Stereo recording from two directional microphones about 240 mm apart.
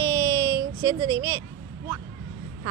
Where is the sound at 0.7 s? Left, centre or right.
Right.